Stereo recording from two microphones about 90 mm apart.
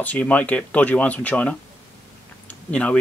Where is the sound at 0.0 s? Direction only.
15° left (ahead or behind).